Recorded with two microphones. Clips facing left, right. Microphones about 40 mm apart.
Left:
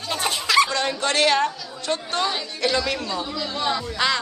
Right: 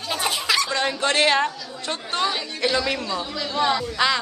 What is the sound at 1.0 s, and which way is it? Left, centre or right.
Chatter, right.